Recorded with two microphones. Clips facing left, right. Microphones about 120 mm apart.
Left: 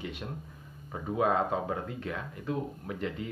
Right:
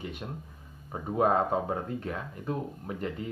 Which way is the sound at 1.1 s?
40° right (ahead or behind).